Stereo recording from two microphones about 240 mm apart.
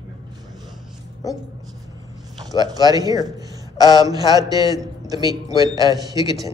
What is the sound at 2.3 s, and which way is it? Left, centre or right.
A man's voice, centre.